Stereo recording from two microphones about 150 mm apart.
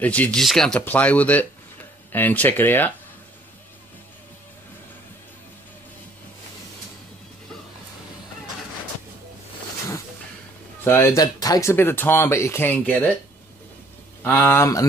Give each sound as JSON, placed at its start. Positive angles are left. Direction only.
{"t": 0.0, "sound": "speech", "side_deg": 10}
{"t": 10.8, "sound": "speech", "side_deg": 15}
{"t": 11.7, "sound": "speech", "side_deg": 15}
{"t": 14.2, "sound": "speech", "side_deg": 15}